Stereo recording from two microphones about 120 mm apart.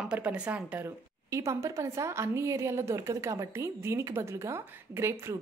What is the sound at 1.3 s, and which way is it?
A woman's voice, 25° right (ahead or behind).